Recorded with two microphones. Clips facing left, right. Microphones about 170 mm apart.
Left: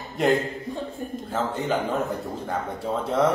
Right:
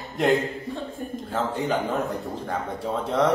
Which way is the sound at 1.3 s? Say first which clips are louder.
Even; centre (ahead or behind).